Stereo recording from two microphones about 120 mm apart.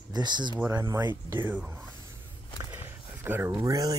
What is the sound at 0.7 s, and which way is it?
Speech, 25° right (ahead or behind).